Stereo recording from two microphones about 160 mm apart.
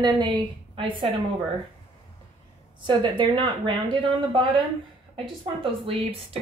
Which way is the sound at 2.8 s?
30° right (ahead or behind).